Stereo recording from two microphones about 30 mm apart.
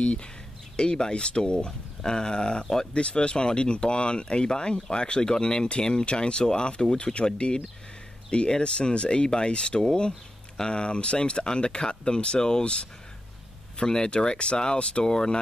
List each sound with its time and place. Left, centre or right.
0.0 s speech: left
0.7 s speech: left
13.7 s speech: left
15.0 s speech: left